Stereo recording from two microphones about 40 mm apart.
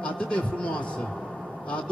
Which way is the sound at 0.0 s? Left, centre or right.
Left.